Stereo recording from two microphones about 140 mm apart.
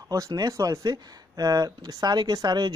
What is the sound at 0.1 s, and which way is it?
Speech, 25° right (ahead or behind).